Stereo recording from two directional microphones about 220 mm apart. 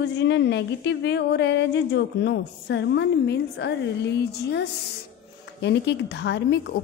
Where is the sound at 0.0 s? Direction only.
50° left (ahead or behind).